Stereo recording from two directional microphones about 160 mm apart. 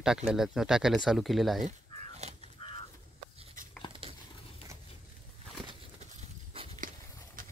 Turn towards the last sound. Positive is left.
turn(degrees=-35)  # may be behind; listen again after turning